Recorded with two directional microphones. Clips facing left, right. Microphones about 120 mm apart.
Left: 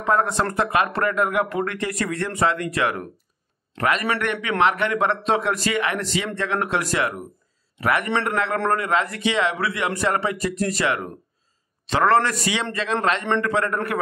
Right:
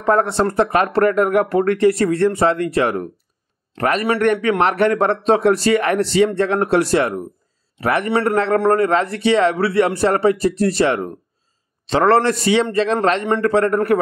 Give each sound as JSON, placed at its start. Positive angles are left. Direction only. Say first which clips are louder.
{"t": 0.0, "sound": "a man's voice", "louder": "right 5 dB", "side_deg": -35}